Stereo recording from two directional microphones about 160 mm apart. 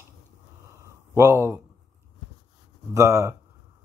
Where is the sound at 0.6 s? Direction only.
15° right (ahead or behind).